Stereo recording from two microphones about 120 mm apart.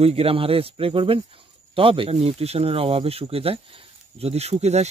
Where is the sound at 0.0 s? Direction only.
55° right (ahead or behind).